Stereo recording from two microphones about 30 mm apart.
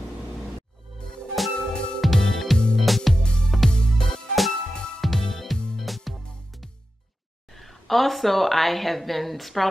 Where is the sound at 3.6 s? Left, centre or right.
Left.